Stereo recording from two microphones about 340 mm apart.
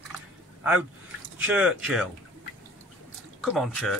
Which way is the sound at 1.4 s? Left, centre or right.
Centre.